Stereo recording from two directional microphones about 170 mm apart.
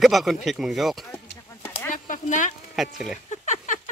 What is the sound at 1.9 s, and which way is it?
Speech, 50° left (ahead or behind).